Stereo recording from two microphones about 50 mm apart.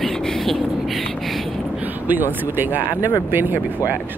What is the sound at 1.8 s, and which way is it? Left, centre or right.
Speech, right.